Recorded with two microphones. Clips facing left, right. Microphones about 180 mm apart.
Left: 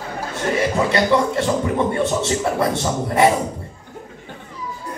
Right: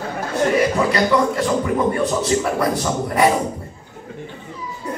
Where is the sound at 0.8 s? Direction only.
25° left (ahead or behind).